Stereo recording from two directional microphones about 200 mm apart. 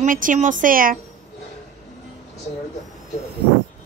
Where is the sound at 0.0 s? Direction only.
40° right (ahead or behind).